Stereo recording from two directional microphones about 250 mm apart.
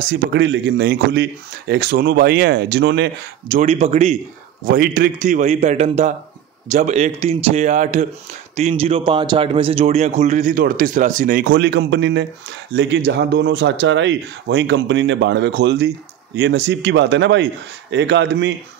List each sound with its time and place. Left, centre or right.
0.0 s a man's voice: right